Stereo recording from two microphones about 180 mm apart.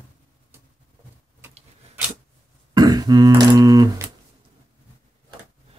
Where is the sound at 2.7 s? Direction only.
20° right (ahead or behind).